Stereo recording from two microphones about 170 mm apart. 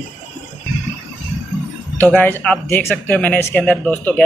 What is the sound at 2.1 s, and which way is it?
Speech, 10° left (ahead or behind).